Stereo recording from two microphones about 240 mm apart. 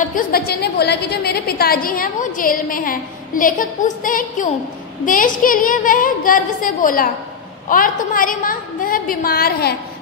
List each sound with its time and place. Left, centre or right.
0.1 s a woman's voice: left